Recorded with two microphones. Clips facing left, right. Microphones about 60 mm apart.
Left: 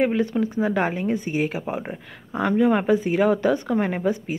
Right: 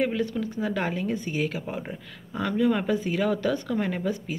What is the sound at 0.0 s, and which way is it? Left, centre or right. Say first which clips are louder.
Speech: left 5 dB; left.